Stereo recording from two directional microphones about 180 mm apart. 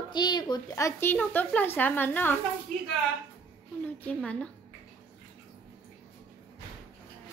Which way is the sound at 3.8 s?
10° left (ahead or behind).